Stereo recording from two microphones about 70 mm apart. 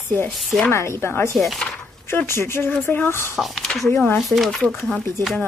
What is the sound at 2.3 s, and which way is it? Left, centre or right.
Speech, left.